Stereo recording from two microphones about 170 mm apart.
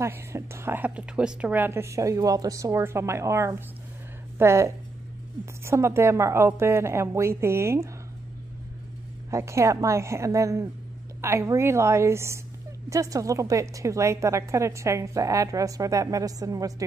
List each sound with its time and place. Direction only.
0.0 s a woman's voice: 15° right (ahead or behind)
9.3 s a woman's voice: 15° right (ahead or behind)